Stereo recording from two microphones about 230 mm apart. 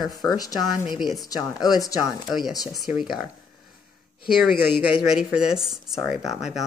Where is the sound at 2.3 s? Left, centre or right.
Centre.